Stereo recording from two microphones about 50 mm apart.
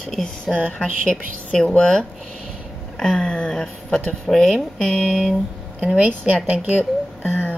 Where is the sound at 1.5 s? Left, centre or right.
Centre.